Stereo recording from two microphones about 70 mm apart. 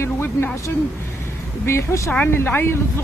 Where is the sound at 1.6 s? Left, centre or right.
Left.